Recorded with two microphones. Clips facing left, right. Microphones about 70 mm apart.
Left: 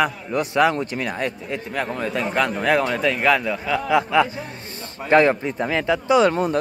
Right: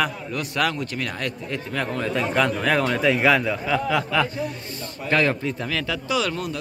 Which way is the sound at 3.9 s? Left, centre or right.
Centre.